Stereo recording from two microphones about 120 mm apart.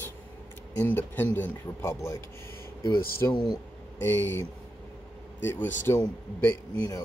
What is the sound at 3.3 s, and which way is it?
Speech, 40° left (ahead or behind).